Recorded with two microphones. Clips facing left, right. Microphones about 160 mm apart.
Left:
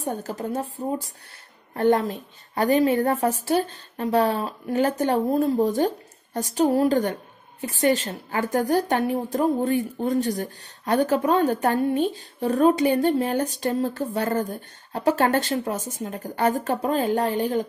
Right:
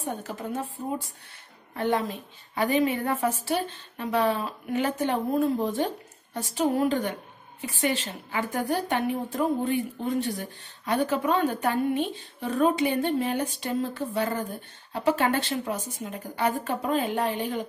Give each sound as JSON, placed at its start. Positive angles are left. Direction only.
{"t": 0.0, "sound": "a woman's voice", "side_deg": 40}
{"t": 1.7, "sound": "a woman's voice", "side_deg": 45}